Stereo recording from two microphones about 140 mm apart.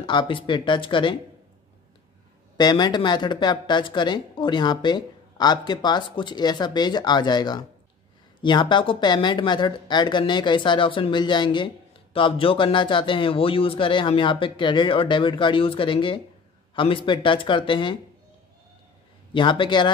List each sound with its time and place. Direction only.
0.0 s speech: 35° left (ahead or behind)
2.5 s speech: 30° left (ahead or behind)
19.3 s speech: 35° left (ahead or behind)